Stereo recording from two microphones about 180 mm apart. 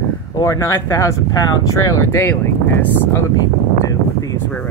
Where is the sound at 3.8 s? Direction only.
20° left (ahead or behind).